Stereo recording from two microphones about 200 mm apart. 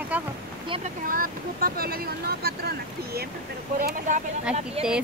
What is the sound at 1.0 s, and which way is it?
Speech, 45° right (ahead or behind).